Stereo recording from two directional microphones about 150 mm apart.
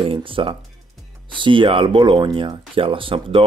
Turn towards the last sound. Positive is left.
turn(degrees=-35)  # may be behind; listen again after turning